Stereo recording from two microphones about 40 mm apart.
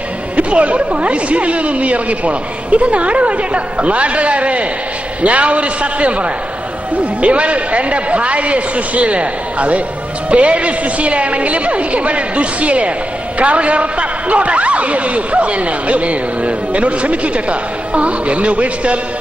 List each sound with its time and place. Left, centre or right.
0.4 s a man's voice: right